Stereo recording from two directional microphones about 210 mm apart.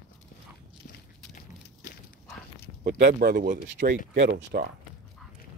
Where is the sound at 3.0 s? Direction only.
45° right (ahead or behind).